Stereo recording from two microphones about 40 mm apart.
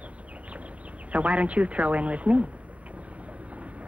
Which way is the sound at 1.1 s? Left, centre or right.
Right.